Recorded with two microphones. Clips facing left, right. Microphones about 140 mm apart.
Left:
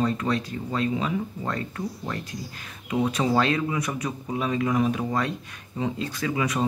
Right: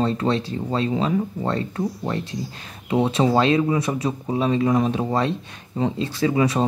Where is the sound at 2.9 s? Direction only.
30° right (ahead or behind).